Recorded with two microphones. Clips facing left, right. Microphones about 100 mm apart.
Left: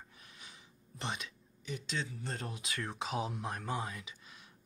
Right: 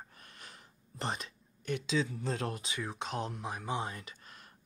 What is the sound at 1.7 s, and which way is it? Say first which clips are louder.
Speech: right 7 dB; 55° right (ahead or behind).